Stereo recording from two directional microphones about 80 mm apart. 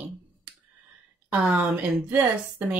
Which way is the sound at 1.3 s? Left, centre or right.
Centre.